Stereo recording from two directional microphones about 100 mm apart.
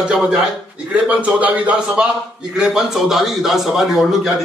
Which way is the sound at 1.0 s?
15° right (ahead or behind).